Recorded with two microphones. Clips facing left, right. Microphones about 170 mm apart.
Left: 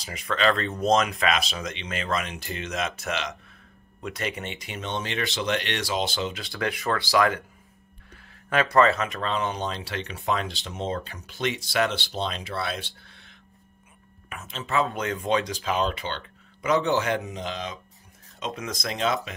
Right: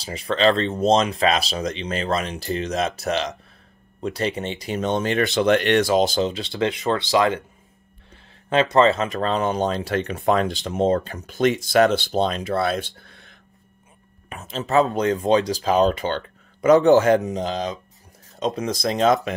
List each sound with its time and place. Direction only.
0.0 s speech: 30° right (ahead or behind)
6.3 s speech: 25° right (ahead or behind)
8.5 s speech: 25° right (ahead or behind); by 13.3 s 50° right (ahead or behind)
14.3 s speech: 35° right (ahead or behind)